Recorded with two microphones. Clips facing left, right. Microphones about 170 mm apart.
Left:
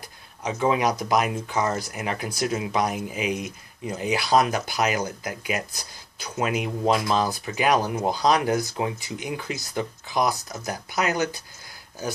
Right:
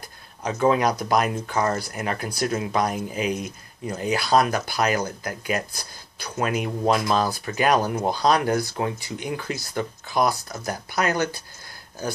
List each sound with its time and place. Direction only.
0.5 s speech: 10° left (ahead or behind)